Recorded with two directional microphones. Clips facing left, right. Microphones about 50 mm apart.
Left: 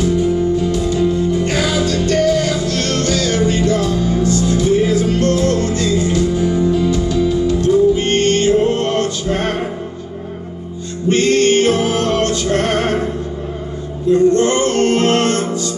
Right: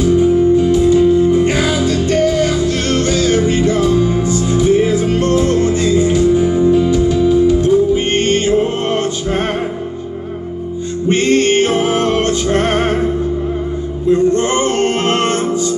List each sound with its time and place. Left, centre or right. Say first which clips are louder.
0.1 s music: right 5 dB; right
11.1 s music: even; right
14.3 s music: even; right